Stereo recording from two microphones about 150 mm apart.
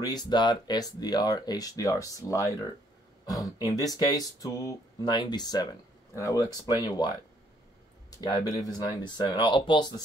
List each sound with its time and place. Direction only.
0.0 s speech: 25° left (ahead or behind)
8.2 s speech: 25° left (ahead or behind)